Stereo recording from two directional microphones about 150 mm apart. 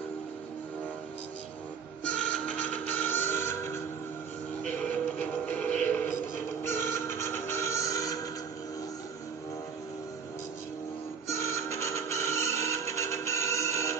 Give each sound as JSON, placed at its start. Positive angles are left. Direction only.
{"t": 2.0, "sound": "music", "side_deg": 10}
{"t": 5.2, "sound": "music", "side_deg": 10}
{"t": 11.2, "sound": "music", "side_deg": 20}